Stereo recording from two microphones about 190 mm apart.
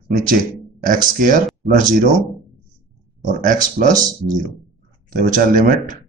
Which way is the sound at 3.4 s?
45° right (ahead or behind).